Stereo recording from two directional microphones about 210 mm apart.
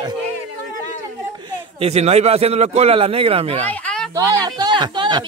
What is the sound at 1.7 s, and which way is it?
Speech, 30° right (ahead or behind).